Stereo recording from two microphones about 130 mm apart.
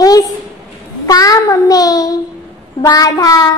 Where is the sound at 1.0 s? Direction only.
30° left (ahead or behind).